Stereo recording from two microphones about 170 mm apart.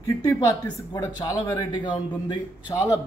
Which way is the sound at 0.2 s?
20° left (ahead or behind).